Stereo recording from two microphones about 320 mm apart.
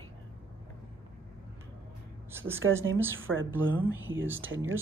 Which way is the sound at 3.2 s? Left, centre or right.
Right.